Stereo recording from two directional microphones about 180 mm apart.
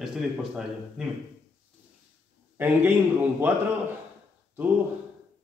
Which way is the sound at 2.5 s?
10° right (ahead or behind).